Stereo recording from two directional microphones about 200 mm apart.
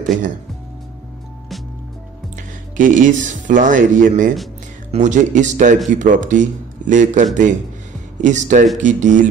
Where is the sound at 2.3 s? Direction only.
40° right (ahead or behind).